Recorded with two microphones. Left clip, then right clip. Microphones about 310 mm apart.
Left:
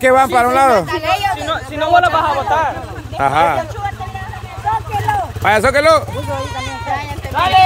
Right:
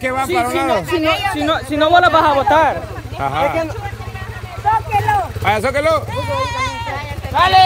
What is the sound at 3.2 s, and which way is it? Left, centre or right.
Speech, centre.